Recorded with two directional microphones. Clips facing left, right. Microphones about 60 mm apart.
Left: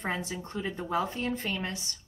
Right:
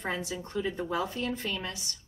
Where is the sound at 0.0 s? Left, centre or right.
Left.